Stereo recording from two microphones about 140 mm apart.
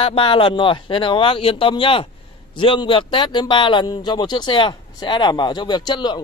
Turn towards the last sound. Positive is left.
turn(degrees=30)  # may be behind; listen again after turning